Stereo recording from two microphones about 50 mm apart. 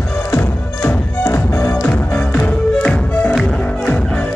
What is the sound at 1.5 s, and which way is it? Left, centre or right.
Music, left.